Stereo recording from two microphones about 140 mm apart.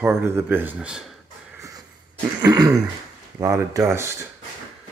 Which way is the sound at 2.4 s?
30° right (ahead or behind).